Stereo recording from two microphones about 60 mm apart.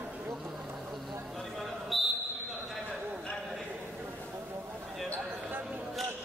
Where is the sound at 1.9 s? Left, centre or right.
Centre.